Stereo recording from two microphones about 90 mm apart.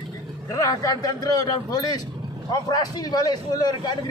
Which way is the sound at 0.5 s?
40° left (ahead or behind).